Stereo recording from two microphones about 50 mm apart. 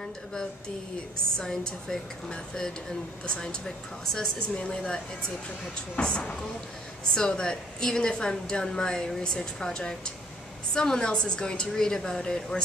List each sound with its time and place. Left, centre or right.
1.4 s speech: centre